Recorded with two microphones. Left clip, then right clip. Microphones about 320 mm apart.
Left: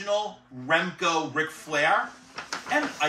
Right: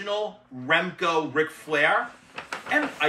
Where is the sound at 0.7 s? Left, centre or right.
Centre.